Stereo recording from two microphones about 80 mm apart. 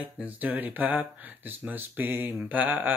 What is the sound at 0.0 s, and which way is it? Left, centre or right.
Speech, centre.